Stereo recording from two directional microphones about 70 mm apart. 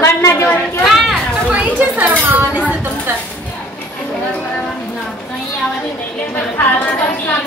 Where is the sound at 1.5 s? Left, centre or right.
Right.